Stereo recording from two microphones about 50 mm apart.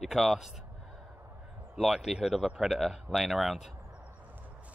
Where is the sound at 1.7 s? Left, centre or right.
Centre.